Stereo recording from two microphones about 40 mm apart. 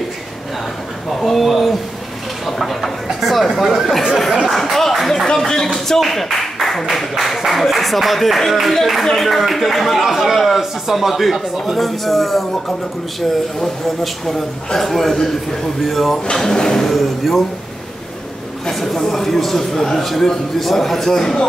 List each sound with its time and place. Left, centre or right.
1.2 s speech: centre
2.4 s a sound: centre
3.5 s a man's voice: centre
5.3 s a man's voice: centre
5.9 s a man's voice: centre
14.0 s a man's voice: centre
18.7 s a man's voice: centre